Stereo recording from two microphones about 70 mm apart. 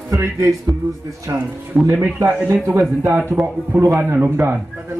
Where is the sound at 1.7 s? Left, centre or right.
Right.